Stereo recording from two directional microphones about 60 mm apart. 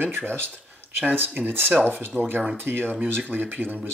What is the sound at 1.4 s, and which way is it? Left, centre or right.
Speech, right.